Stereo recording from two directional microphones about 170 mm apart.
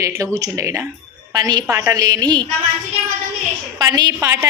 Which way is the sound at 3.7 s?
25° right (ahead or behind).